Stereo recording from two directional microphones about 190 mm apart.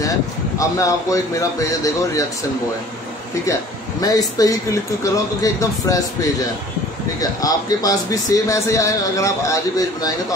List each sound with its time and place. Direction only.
0.6 s a man's voice: 15° left (ahead or behind)
4.0 s a man's voice: 20° left (ahead or behind)